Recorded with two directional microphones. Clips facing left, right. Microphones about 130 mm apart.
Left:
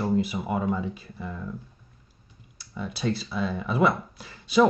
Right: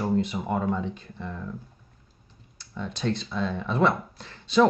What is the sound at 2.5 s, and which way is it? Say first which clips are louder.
Speech: even; 10° left (ahead or behind).